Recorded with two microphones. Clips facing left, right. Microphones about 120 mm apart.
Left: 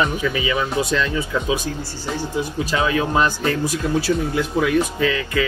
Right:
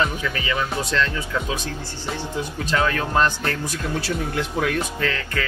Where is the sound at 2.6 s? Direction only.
10° left (ahead or behind).